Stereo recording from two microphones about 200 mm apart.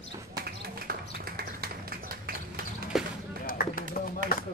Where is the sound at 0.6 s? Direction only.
50° right (ahead or behind).